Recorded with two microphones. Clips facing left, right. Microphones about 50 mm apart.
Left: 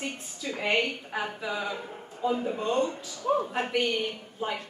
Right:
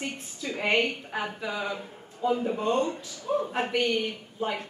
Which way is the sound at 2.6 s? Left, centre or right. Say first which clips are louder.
Right 1 dB; centre.